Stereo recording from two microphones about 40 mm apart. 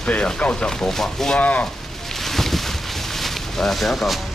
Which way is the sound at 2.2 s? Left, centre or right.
Centre.